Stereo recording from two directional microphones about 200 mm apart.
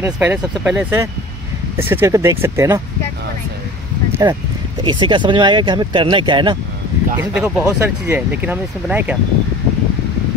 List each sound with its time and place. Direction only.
0.0 s speech: 10° right (ahead or behind)
4.2 s speech: 15° right (ahead or behind)
7.2 s speech: 5° right (ahead or behind)